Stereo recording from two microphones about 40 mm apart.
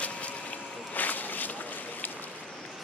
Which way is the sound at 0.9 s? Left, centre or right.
Left.